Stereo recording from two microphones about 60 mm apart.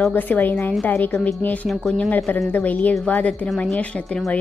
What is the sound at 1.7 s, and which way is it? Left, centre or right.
Speech, centre.